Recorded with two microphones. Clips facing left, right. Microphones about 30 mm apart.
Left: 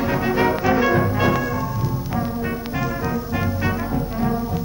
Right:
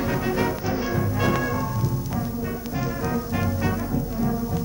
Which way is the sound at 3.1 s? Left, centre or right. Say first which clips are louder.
Left 2 dB; centre.